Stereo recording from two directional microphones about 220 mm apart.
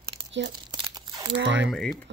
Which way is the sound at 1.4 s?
55° right (ahead or behind).